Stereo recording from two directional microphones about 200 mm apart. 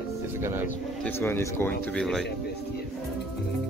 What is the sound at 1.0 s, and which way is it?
Speech, 10° left (ahead or behind).